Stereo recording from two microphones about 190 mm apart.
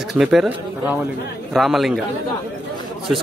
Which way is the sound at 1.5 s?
Centre (ahead or behind).